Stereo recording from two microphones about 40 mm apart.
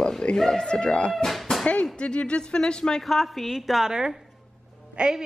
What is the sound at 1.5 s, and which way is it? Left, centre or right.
Music, centre.